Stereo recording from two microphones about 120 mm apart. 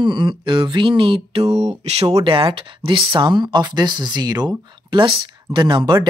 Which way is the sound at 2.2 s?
50° right (ahead or behind).